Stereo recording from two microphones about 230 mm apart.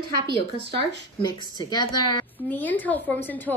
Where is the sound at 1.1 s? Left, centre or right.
Centre.